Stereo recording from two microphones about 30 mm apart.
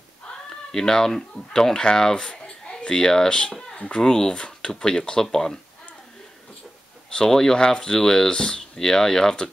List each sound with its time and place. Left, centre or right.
0.5 s speech: centre
2.1 s a sound: left
2.9 s speech: left
5.2 s speech: centre
7.2 s speech: centre
8.3 s speech: left